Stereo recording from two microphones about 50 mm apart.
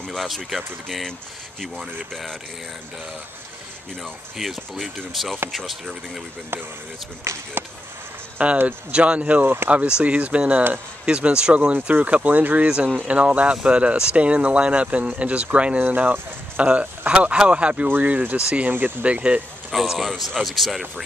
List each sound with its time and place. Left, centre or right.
0.0 s speech: centre
4.0 s speech: centre
7.3 s speech: right
8.4 s speech: right
11.7 s speech: right
12.6 s speech: right
15.8 s speech: right
18.7 s speech: right
19.0 s speech: right
19.7 s speech: centre